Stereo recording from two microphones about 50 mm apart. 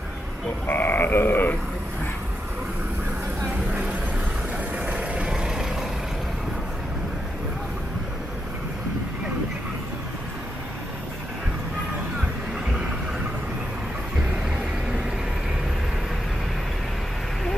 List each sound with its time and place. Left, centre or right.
0.7 s a sound: left
4.9 s vehicle: right
5.3 s vehicle: centre